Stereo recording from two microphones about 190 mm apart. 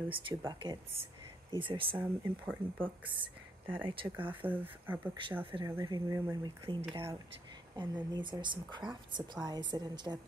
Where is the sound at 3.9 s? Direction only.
25° right (ahead or behind).